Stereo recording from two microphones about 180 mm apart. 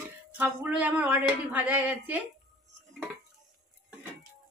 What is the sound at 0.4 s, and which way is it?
Speech, 10° right (ahead or behind).